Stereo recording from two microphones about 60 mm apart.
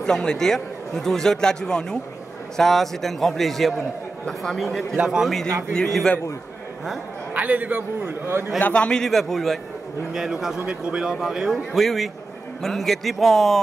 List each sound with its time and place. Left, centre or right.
0.0 s a man's voice: centre
5.0 s a man's voice: centre
5.7 s a man's voice: centre
7.3 s a man's voice: right
8.5 s a man's voice: left
9.0 s a man's voice: centre